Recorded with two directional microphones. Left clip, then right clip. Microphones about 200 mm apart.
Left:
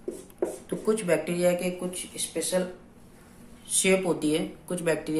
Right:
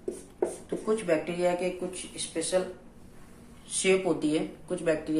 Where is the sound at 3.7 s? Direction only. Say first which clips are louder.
Left 1 dB; 20° left (ahead or behind).